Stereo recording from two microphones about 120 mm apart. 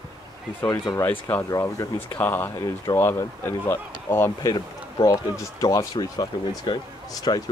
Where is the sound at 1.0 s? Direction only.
20° left (ahead or behind).